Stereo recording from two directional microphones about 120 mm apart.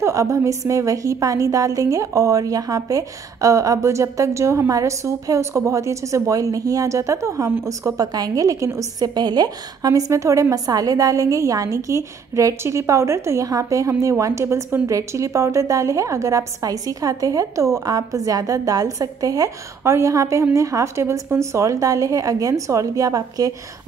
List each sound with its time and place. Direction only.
0.0 s a woman's voice: 25° right (ahead or behind)